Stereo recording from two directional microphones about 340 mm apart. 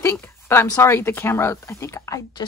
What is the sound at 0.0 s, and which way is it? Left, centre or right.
Speech, centre.